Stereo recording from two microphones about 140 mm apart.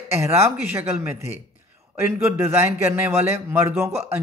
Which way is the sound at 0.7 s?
15° right (ahead or behind).